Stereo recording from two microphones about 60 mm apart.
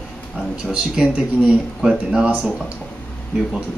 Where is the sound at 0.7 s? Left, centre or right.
Centre.